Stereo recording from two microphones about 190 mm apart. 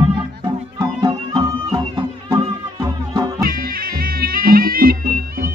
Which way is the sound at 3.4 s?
50° right (ahead or behind).